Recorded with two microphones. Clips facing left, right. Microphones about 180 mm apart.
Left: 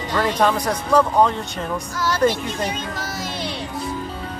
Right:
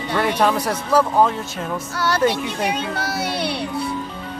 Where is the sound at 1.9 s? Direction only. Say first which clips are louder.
Even; 65° right (ahead or behind).